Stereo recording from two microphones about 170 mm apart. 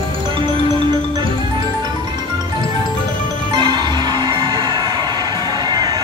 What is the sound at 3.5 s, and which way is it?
Music, 25° right (ahead or behind).